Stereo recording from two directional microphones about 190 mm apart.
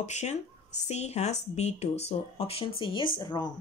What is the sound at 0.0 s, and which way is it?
Speech, 35° left (ahead or behind).